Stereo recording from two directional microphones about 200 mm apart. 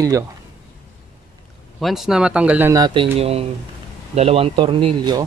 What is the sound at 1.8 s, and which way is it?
Speech, centre (ahead or behind).